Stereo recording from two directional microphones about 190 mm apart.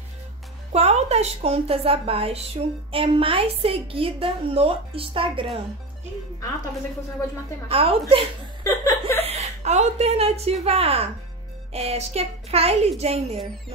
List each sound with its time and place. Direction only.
0.7 s a woman's voice: 35° right (ahead or behind)
7.6 s a woman's voice: 30° right (ahead or behind)
8.6 s chuckle: 15° left (ahead or behind)
9.2 s a woman's voice: 35° right (ahead or behind)